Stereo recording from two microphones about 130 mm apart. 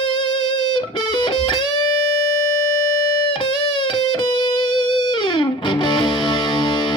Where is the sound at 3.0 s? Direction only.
35° left (ahead or behind).